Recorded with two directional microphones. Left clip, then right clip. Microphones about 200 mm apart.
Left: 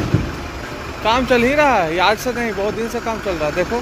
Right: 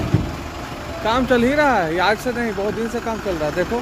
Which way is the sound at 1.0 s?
15° right (ahead or behind).